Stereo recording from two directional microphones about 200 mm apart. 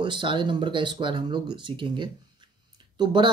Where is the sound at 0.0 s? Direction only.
25° right (ahead or behind).